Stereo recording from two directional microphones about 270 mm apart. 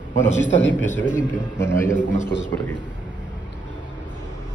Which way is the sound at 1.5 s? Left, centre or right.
Centre.